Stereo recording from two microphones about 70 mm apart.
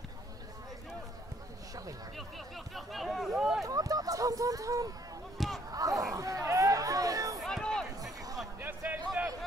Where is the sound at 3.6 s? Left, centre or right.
Right.